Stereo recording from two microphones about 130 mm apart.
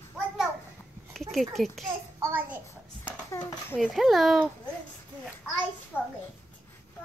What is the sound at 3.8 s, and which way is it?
Speech, centre (ahead or behind).